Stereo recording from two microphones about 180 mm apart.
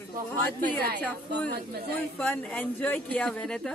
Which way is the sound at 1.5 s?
60° right (ahead or behind).